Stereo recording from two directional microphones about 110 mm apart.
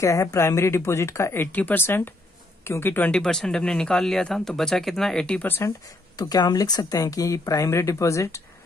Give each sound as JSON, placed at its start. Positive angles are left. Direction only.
{"t": 0.0, "sound": "speech", "side_deg": 30}
{"t": 6.1, "sound": "speech", "side_deg": 35}